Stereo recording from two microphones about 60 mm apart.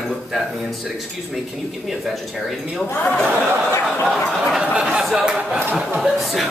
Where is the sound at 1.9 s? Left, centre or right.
Centre.